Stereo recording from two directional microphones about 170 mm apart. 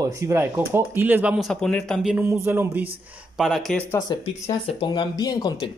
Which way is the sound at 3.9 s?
20° left (ahead or behind).